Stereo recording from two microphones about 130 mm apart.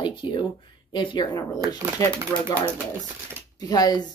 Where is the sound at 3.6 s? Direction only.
30° left (ahead or behind).